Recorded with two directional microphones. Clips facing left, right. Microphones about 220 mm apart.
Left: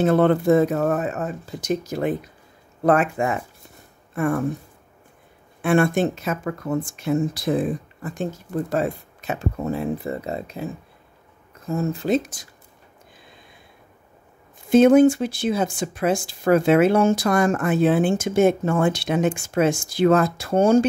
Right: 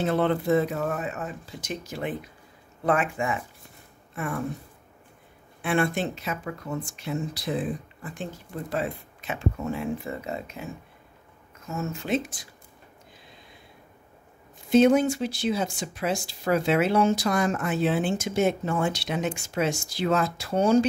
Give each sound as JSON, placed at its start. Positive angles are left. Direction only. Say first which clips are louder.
{"t": 0.0, "sound": "speech", "louder": "left 7 dB", "side_deg": 50}
{"t": 5.6, "sound": "speech", "louder": "left 7 dB", "side_deg": 50}
{"t": 14.7, "sound": "speech", "louder": "left 6 dB", "side_deg": 50}